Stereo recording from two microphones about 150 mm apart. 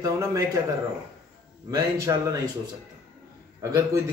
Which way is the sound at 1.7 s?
25° right (ahead or behind).